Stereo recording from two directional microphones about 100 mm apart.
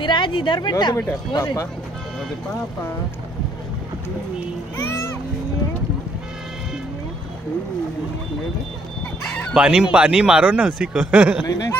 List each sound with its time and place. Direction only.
0.0 s speech: 55° left (ahead or behind)
9.5 s speech: 5° right (ahead or behind)